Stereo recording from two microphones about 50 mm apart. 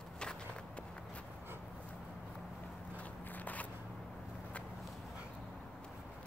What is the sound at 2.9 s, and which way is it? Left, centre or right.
Walk, left.